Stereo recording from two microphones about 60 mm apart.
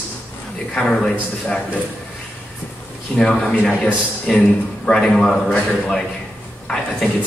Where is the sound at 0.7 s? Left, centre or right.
Centre.